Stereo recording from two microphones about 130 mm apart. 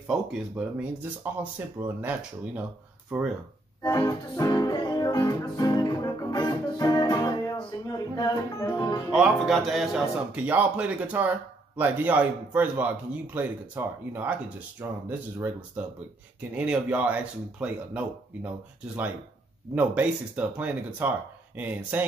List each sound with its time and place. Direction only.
0.0 s speech: 5° right (ahead or behind)
3.8 s music: 30° left (ahead or behind)
9.1 s speech: 5° right (ahead or behind)
19.7 s speech: 10° right (ahead or behind)